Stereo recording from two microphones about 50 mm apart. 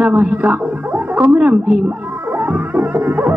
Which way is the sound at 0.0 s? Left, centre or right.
Right.